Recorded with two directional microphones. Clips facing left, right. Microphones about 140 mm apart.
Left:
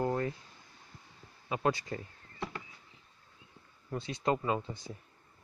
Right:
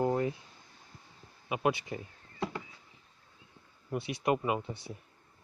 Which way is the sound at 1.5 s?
15° right (ahead or behind).